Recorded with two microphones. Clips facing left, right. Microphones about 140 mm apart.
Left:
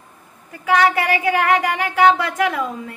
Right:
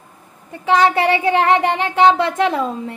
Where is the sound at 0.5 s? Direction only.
25° right (ahead or behind).